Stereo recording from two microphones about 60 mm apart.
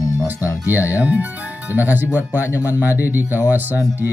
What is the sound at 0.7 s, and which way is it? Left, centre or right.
Speech, right.